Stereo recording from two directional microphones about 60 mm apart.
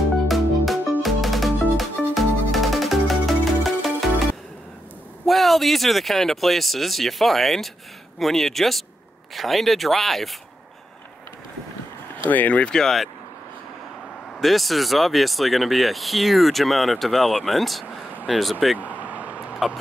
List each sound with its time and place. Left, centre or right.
0.3 s music: centre
5.2 s speech: centre
12.3 s speech: left
12.7 s speech: centre
14.4 s speech: centre
19.0 s a sound: right